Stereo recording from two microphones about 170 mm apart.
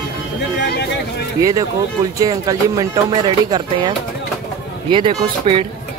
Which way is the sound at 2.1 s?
20° right (ahead or behind).